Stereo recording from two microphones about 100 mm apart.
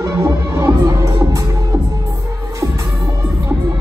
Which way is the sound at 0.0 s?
30° right (ahead or behind).